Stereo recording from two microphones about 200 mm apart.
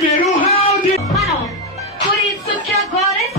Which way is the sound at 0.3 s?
30° left (ahead or behind).